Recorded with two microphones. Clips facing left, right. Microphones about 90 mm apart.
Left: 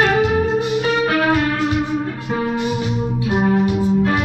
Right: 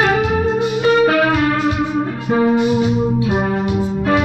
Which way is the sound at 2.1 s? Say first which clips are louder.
Right 6 dB; 55° right (ahead or behind).